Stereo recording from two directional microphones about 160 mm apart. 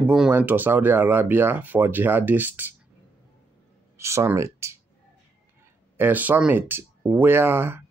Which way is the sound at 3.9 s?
15° right (ahead or behind).